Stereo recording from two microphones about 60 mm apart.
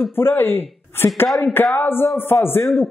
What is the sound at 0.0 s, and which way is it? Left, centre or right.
Speech, left.